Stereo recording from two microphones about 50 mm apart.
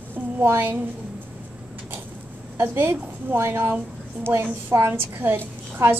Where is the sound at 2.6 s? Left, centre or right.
Right.